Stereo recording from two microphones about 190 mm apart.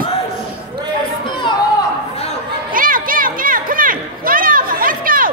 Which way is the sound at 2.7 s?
45° right (ahead or behind).